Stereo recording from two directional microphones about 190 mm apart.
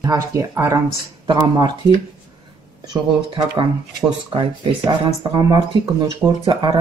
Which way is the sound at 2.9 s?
20° right (ahead or behind).